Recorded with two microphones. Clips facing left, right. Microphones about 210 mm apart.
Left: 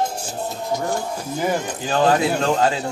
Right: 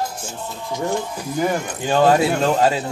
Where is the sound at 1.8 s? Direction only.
25° right (ahead or behind).